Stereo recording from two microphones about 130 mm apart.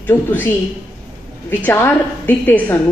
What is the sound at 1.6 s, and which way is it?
A woman's voice, 15° left (ahead or behind).